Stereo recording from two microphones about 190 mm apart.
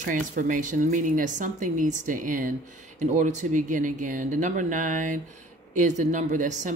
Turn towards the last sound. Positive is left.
turn(degrees=-40)  # may be behind; listen again after turning